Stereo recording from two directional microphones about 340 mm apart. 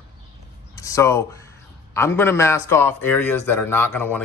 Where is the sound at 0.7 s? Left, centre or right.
Centre.